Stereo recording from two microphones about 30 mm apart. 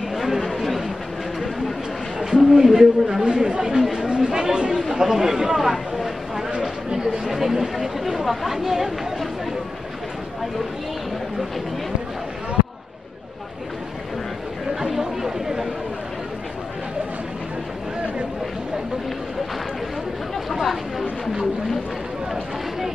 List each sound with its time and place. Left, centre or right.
0.1 s chatter: centre
0.4 s a sound: centre
2.5 s speech: centre
3.3 s speech: right
4.0 s speech: right
5.0 s a sound: centre
7.2 s speech: centre
14.8 s chatter: centre